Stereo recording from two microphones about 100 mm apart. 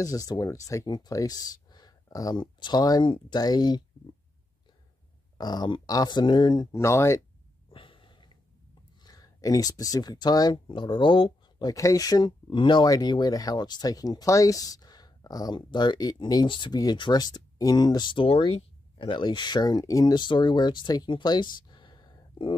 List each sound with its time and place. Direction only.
0.0 s speech: 35° left (ahead or behind)
5.4 s speech: 45° left (ahead or behind)
6.7 s speech: 30° left (ahead or behind)
7.7 s a sound: 60° left (ahead or behind)
9.0 s speech: 40° left (ahead or behind)
10.7 s speech: 55° left (ahead or behind)
11.6 s speech: 35° left (ahead or behind)
12.4 s speech: 55° left (ahead or behind); by 20.2 s 35° left (ahead or behind)
20.2 s speech: 50° left (ahead or behind)